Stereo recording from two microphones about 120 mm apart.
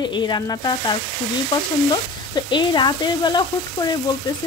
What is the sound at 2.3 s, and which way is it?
A woman's voice, 35° left (ahead or behind).